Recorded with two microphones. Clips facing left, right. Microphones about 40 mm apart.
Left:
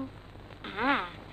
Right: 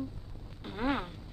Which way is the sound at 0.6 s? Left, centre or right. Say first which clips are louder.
Left 4 dB; left.